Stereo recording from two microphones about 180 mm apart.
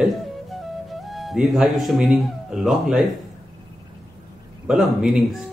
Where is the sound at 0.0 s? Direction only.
Centre (ahead or behind).